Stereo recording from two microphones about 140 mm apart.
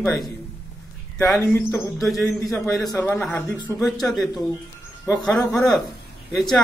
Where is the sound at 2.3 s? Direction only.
20° left (ahead or behind).